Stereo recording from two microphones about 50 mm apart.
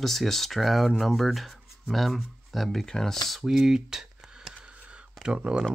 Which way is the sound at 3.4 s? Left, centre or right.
Centre.